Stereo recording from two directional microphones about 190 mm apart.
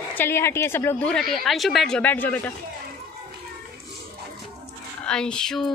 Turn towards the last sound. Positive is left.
turn(degrees=0)  # may be behind; listen again after turning